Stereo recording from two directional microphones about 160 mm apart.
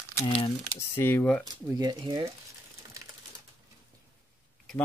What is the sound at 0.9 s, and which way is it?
Speech, 15° left (ahead or behind).